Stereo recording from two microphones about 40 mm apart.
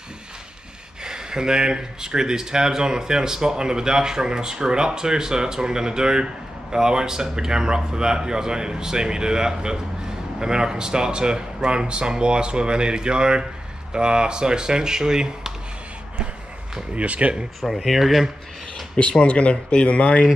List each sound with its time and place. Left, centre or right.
1.0 s speech: centre
16.9 s speech: right
17.6 s speech: centre
19.2 s speech: left